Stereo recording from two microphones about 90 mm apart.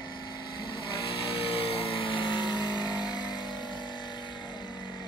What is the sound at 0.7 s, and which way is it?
Vehicle, 75° left (ahead or behind).